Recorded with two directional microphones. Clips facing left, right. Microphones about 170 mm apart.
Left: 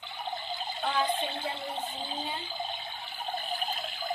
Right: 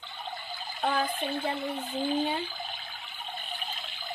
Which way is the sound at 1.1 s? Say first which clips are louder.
Right 1 dB; 25° left (ahead or behind).